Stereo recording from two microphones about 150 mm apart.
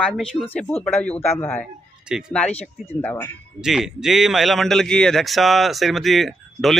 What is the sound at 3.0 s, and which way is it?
Speech, 10° left (ahead or behind).